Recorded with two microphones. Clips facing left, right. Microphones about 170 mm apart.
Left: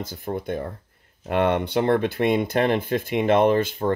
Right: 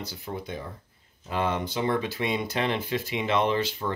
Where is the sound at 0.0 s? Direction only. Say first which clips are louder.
Left 6 dB; 50° left (ahead or behind).